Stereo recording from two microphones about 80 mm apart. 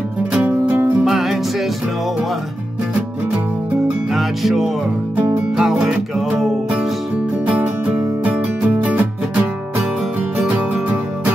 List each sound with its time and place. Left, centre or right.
0.3 s music: centre
1.0 s music: centre
3.8 s music: centre
5.1 s music: right
5.6 s music: centre
7.4 s music: right